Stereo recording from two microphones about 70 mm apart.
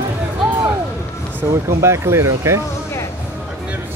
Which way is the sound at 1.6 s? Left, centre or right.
Right.